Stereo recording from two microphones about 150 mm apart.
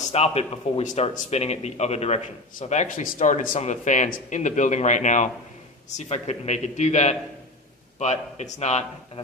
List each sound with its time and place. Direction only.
0.1 s speech: 45° left (ahead or behind)